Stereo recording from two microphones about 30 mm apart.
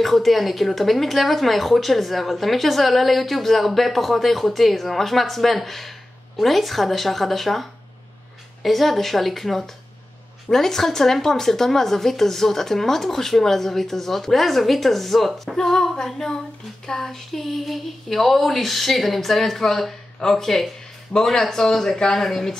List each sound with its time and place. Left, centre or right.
0.0 s speech: centre
8.6 s speech: centre